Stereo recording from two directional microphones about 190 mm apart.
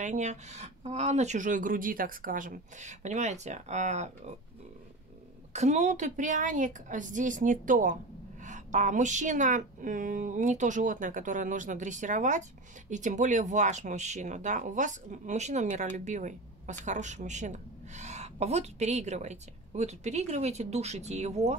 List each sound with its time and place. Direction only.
0.0 s a woman's voice: 40° right (ahead or behind)
5.5 s a woman's voice: 35° right (ahead or behind)